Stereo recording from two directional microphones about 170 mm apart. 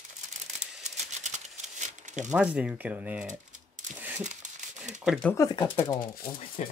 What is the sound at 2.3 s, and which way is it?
Speech, 5° right (ahead or behind).